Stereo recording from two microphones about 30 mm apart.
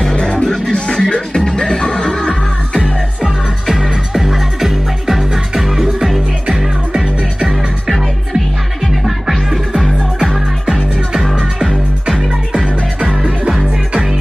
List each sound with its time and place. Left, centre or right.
0.1 s music: left
4.3 s music: centre
9.0 s music: centre